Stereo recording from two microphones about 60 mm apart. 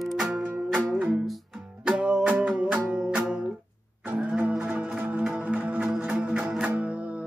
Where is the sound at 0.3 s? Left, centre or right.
Right.